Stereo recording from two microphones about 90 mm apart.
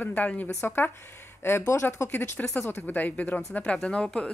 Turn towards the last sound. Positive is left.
turn(degrees=10)  # may be behind; listen again after turning